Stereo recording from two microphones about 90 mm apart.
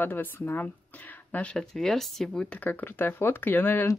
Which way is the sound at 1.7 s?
5° left (ahead or behind).